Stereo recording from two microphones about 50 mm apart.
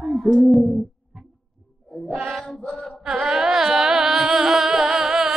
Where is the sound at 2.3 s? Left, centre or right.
Centre.